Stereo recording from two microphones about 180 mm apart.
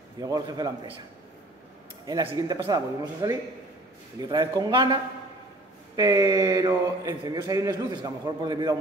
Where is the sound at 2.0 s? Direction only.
20° right (ahead or behind).